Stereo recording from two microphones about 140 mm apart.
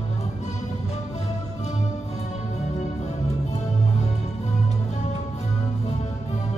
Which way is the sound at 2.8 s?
55° left (ahead or behind).